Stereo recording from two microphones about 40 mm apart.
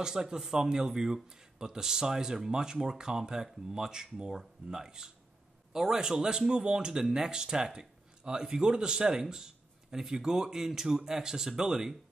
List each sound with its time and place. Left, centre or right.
0.0 s speech: centre